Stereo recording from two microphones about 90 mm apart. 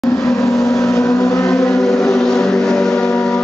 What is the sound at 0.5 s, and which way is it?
Vehicle, 5° left (ahead or behind).